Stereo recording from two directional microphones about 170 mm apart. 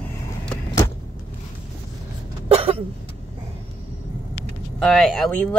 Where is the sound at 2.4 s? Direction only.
35° right (ahead or behind).